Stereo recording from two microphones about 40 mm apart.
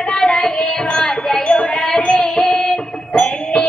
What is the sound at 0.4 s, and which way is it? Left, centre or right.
Wind chime, centre.